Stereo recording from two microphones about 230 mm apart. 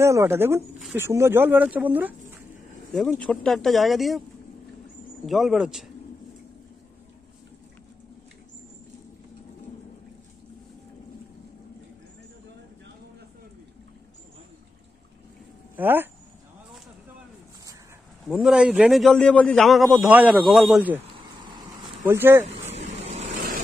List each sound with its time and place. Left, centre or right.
0.0 s a man's voice: centre
5.2 s a man's voice: centre
15.7 s speech: centre
18.2 s a man's voice: centre
21.4 s a sound: centre
22.0 s speech: centre
23.0 s vehicle: right